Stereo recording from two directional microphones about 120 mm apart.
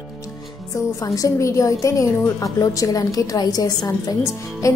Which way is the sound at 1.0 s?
25° left (ahead or behind).